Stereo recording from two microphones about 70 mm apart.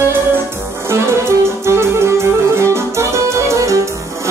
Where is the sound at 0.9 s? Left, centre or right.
Right.